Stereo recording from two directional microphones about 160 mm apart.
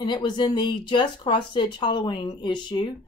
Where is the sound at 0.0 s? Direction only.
30° left (ahead or behind).